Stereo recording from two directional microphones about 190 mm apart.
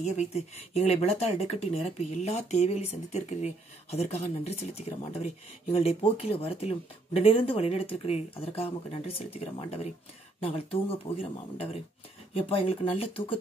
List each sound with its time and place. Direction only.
0.0 s speech: 35° left (ahead or behind)